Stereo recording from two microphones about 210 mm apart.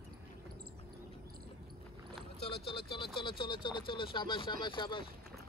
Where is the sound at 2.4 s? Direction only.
25° left (ahead or behind).